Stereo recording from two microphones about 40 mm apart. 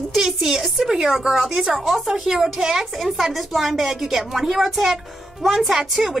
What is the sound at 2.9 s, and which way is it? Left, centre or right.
A woman's voice, centre.